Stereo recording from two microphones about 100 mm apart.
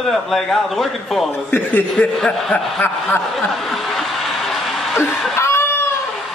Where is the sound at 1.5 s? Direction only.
15° left (ahead or behind).